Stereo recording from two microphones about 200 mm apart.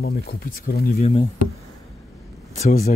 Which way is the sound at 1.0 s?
30° left (ahead or behind).